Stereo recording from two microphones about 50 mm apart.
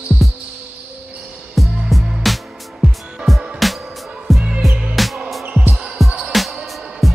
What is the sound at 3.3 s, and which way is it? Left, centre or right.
Music, centre.